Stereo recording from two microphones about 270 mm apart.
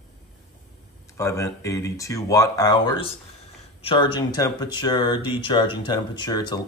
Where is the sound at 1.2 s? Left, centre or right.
Centre.